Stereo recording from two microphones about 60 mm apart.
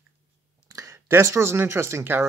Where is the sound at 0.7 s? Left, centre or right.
Right.